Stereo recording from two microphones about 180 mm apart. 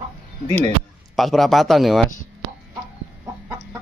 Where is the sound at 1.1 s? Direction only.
Centre (ahead or behind).